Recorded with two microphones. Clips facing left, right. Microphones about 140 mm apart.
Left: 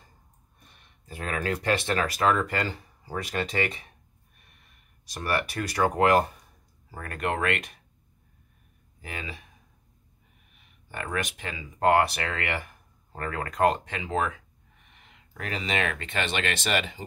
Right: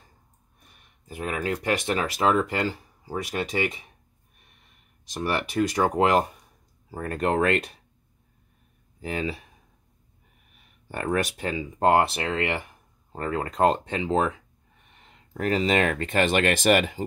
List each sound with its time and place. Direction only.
1.0 s speech: 15° right (ahead or behind)
5.0 s speech: 20° right (ahead or behind)
9.0 s speech: 30° right (ahead or behind)
10.9 s speech: 35° right (ahead or behind)